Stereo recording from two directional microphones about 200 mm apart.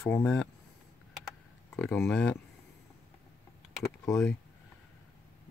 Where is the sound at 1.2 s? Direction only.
5° left (ahead or behind).